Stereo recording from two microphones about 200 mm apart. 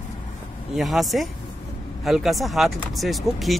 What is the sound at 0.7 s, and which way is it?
Speech, centre (ahead or behind).